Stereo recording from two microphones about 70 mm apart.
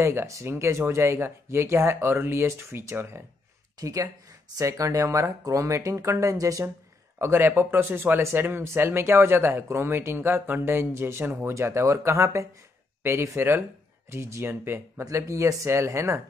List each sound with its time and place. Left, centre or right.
0.0 s speech: right
3.8 s speech: right
7.2 s speech: right
15.0 s speech: right